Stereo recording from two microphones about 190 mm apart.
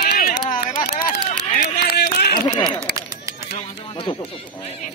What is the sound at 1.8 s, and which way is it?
Run, 55° left (ahead or behind).